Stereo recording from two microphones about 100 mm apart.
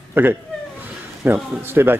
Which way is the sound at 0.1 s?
20° right (ahead or behind).